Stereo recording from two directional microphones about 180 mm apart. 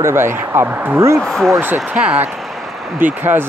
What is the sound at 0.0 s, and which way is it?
Speech, 15° right (ahead or behind).